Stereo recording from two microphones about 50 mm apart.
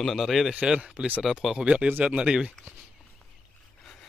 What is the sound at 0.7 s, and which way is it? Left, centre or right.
Speech, centre.